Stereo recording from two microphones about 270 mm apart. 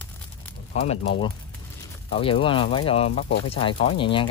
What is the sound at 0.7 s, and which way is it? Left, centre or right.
Speech, left.